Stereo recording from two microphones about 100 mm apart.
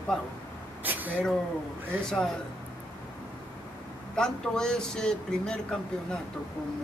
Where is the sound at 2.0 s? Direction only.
10° left (ahead or behind).